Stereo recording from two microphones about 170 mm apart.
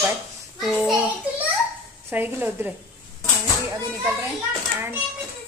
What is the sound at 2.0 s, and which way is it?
Speech, 10° right (ahead or behind).